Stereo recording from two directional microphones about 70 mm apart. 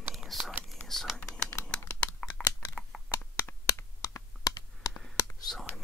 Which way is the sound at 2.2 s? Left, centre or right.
Left.